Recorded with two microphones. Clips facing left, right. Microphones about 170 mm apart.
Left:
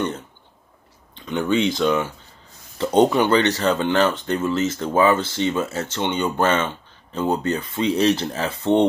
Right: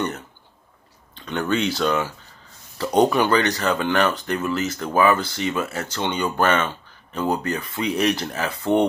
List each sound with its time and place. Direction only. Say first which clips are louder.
1.2 s speech: left 2 dB; 15° left (ahead or behind)